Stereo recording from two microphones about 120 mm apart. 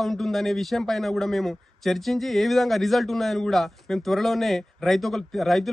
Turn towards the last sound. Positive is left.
turn(degrees=0)  # may be behind; listen again after turning